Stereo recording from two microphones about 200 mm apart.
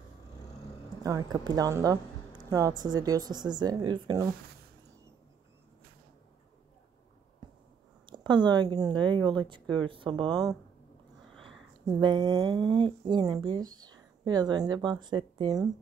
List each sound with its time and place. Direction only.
1.0 s a woman's voice: 20° right (ahead or behind)
8.1 s a woman's voice: 20° right (ahead or behind)
11.3 s a sound: centre (ahead or behind)
11.8 s a woman's voice: 20° right (ahead or behind)